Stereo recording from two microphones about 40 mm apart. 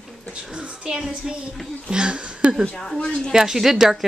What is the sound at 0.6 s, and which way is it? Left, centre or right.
Speech, right.